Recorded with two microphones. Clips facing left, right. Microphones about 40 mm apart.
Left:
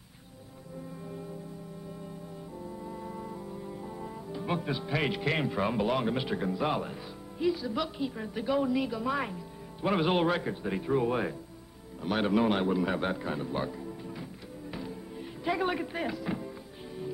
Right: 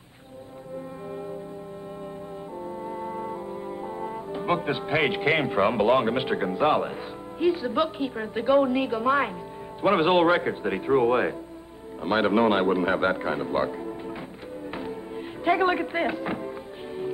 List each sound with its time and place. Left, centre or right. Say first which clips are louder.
2.8 s a man's voice: right 9 dB; right
14.7 s music: right 6 dB; right